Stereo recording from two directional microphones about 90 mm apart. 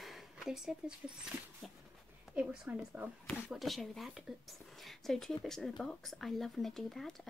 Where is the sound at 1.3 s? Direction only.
20° right (ahead or behind).